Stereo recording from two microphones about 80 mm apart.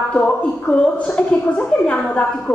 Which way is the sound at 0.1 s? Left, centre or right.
Centre.